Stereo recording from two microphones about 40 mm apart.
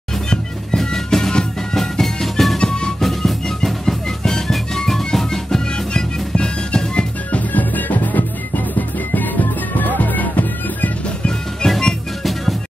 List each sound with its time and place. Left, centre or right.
0.7 s music: centre
2.6 s music: left
3.0 s music: centre
6.3 s music: left
7.3 s music: left
11.6 s music: centre